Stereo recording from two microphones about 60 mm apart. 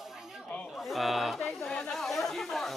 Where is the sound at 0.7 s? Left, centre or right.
Centre.